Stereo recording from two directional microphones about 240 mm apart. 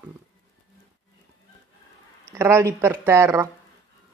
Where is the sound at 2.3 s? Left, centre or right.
Centre.